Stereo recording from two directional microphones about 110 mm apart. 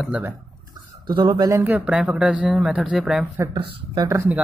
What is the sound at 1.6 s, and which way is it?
Speech, 10° right (ahead or behind).